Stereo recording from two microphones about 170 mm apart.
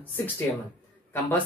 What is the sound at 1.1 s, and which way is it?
Speech, 15° left (ahead or behind).